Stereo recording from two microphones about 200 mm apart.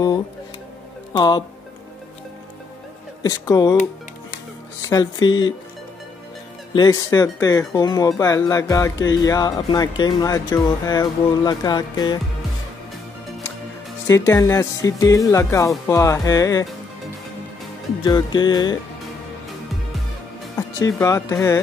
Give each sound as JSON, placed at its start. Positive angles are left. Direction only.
{"t": 1.1, "sound": "speech", "side_deg": 20}
{"t": 3.2, "sound": "speech", "side_deg": 20}
{"t": 4.8, "sound": "speech", "side_deg": 20}
{"t": 6.7, "sound": "speech", "side_deg": 20}
{"t": 14.0, "sound": "speech", "side_deg": 15}
{"t": 18.0, "sound": "speech", "side_deg": 20}
{"t": 20.5, "sound": "speech", "side_deg": 15}